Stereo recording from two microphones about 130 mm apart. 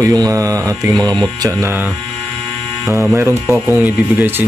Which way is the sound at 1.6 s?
15° right (ahead or behind).